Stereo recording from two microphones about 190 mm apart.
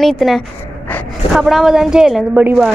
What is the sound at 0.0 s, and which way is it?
Speech, centre (ahead or behind).